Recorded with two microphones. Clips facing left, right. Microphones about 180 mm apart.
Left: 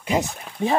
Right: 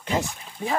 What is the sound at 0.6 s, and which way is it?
Speech, 25° left (ahead or behind).